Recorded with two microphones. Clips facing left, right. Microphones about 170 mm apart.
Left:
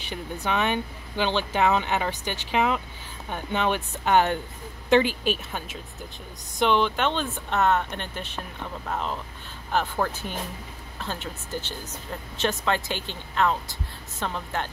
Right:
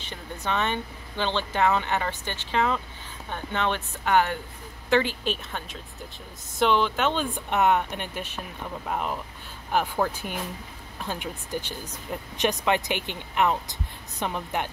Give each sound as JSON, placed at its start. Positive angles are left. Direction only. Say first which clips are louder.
{"t": 0.0, "sound": "speech", "louder": "left 3 dB", "side_deg": 15}
{"t": 4.0, "sound": "speech", "louder": "left 1 dB", "side_deg": 25}